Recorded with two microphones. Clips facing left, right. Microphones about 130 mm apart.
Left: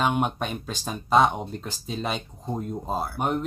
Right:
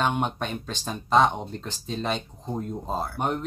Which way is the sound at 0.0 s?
5° left (ahead or behind).